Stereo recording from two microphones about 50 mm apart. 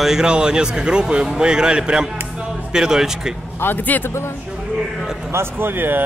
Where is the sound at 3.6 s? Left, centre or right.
Left.